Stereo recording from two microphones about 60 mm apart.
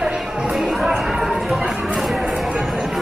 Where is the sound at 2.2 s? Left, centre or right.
Centre.